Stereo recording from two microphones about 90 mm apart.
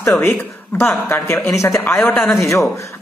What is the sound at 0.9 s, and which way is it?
Speech, 25° left (ahead or behind).